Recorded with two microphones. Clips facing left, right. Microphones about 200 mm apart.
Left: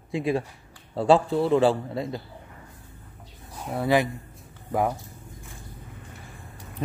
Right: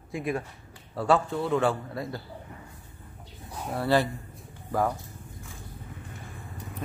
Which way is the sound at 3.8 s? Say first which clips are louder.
Left 2 dB; 15° left (ahead or behind).